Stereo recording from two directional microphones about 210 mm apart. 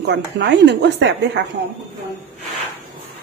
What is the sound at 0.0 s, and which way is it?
Speech, 55° right (ahead or behind).